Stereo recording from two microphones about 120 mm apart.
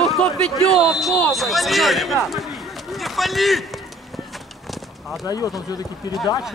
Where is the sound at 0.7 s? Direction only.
Centre (ahead or behind).